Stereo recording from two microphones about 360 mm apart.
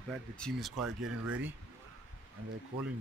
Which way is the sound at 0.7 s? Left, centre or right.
Right.